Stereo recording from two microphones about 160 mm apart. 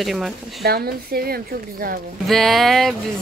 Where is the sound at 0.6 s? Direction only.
75° right (ahead or behind).